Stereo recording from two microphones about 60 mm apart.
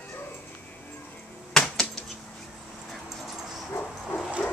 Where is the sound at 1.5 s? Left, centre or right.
Centre.